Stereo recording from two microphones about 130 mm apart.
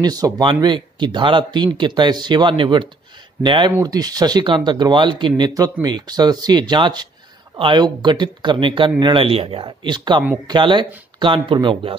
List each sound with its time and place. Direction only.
0.0 s speech: 30° right (ahead or behind)